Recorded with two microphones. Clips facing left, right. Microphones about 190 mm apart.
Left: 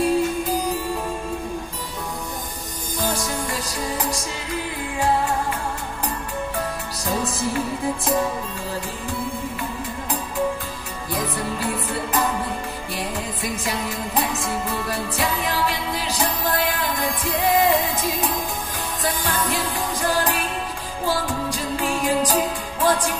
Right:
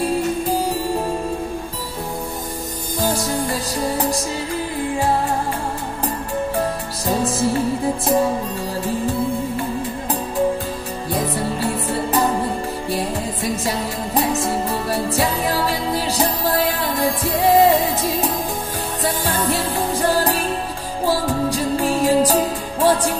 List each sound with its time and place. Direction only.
3.0 s music: 35° right (ahead or behind)
7.2 s music: 30° right (ahead or behind)
11.1 s music: 30° right (ahead or behind)
19.3 s music: 35° right (ahead or behind)